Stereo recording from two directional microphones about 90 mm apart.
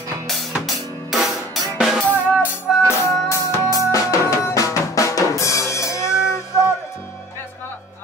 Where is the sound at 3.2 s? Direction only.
35° left (ahead or behind).